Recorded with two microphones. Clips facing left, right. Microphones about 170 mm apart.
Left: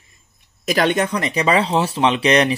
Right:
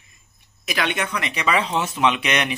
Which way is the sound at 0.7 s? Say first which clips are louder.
Left 7 dB; 45° left (ahead or behind).